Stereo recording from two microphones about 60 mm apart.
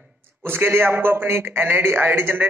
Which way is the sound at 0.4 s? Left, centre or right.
Right.